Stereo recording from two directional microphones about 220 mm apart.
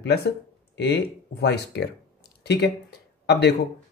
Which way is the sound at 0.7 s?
50° left (ahead or behind).